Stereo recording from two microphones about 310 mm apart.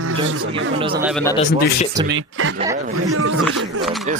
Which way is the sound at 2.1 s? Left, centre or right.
Right.